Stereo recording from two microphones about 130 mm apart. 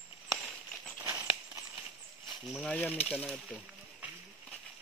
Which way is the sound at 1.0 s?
20° right (ahead or behind).